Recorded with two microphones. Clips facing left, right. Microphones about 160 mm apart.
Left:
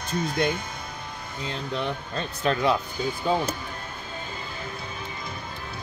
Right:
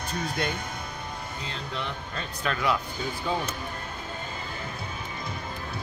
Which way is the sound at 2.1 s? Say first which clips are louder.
Left 5 dB; 30° left (ahead or behind).